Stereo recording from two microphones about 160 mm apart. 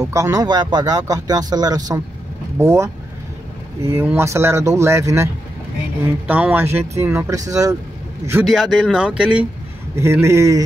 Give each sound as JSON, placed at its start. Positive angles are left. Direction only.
{"t": 0.0, "sound": "speech", "side_deg": -20}
{"t": 8.5, "sound": "speech", "side_deg": 0}